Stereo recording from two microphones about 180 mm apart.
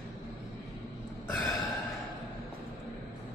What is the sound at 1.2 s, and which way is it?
Burping, 10° left (ahead or behind).